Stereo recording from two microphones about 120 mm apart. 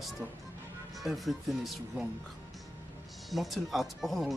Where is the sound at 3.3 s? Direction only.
Centre (ahead or behind).